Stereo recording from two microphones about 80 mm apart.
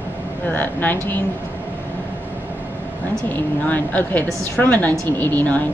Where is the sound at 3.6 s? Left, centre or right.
Left.